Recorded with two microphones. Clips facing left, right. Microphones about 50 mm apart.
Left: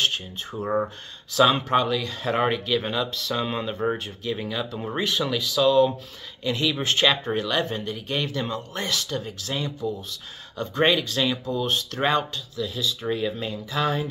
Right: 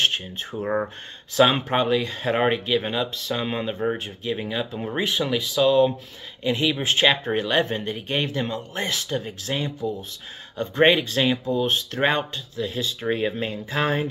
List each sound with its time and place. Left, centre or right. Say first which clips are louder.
0.0 s speech: right 2 dB; right; by 4.0 s centre
4.2 s speech: right 1 dB; centre
8.4 s speech: right 2 dB; centre; by 14.0 s right